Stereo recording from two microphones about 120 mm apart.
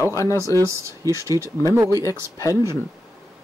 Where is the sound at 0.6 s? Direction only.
25° right (ahead or behind).